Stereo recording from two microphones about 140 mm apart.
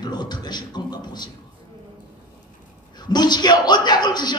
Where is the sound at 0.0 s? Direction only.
30° left (ahead or behind).